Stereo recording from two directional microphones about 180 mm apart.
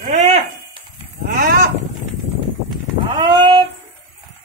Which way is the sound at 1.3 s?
60° right (ahead or behind).